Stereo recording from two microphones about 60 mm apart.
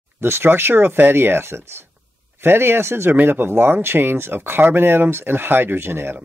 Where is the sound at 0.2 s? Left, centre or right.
Right.